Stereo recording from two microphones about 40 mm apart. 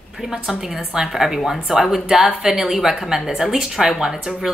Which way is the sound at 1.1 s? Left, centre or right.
Centre.